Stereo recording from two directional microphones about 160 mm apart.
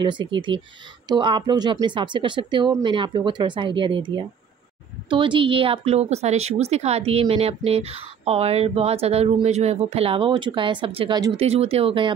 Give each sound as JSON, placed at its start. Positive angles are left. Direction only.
{"t": 0.0, "sound": "speech", "side_deg": -30}
{"t": 11.3, "sound": "speech", "side_deg": -40}